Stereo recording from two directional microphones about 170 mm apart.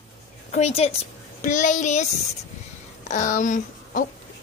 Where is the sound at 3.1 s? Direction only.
45° left (ahead or behind).